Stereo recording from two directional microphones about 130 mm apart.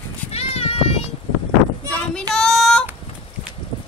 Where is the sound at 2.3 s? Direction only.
5° left (ahead or behind).